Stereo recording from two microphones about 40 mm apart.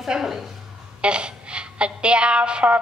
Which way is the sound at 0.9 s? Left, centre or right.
Right.